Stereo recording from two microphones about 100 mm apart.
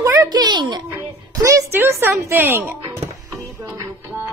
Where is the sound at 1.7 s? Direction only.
25° right (ahead or behind).